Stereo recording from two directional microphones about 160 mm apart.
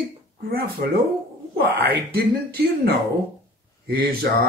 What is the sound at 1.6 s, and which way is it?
Speech, 75° right (ahead or behind).